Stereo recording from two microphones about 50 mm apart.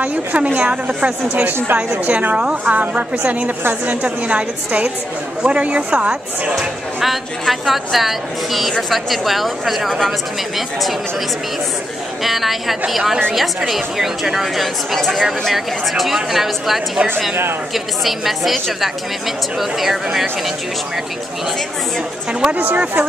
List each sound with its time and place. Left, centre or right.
0.0 s a woman's voice: right
7.0 s a woman's voice: centre
12.2 s a woman's voice: centre
22.5 s speech: right